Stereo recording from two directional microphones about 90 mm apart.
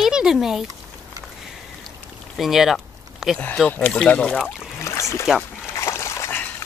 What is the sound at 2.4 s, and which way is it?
Speech, 5° right (ahead or behind).